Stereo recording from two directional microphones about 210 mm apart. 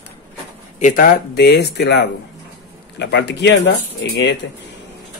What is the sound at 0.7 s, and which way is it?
Speech, 35° left (ahead or behind).